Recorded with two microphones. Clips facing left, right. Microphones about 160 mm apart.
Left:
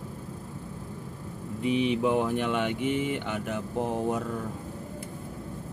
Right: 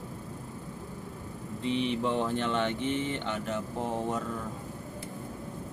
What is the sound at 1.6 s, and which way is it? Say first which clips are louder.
Speech: left 4 dB; 10° left (ahead or behind).